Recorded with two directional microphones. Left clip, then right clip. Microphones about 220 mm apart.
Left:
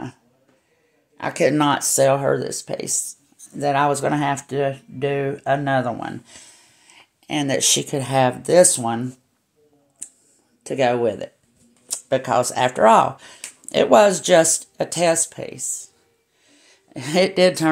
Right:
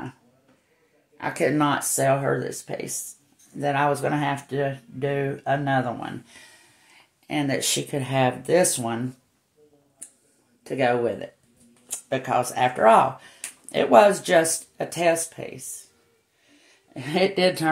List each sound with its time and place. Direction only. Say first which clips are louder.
1.1 s speech: left 5 dB; 45° left (ahead or behind)
10.6 s speech: left 3 dB; 45° left (ahead or behind)
16.4 s a sound: left 3 dB; 45° left (ahead or behind)